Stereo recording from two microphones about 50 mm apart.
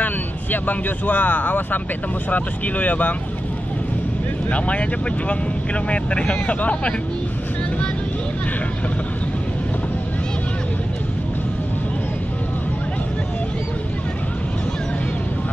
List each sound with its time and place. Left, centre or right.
0.0 s speech: left
4.5 s speech: left
5.9 s speech: left